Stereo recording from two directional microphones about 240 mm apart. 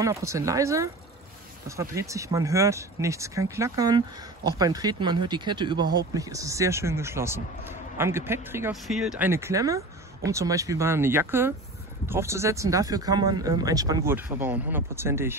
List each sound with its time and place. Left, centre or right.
0.0 s speech: centre